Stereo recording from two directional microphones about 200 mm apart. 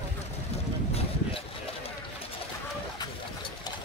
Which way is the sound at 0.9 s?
30° left (ahead or behind).